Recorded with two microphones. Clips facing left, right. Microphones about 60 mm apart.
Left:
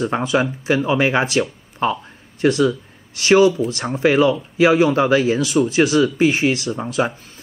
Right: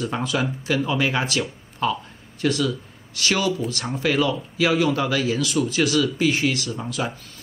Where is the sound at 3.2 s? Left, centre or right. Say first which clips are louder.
Left 9 dB; left.